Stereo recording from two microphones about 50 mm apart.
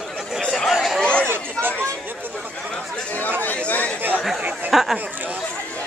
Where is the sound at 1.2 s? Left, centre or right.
Right.